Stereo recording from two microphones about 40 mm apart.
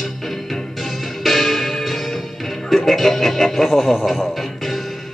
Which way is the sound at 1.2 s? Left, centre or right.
Centre.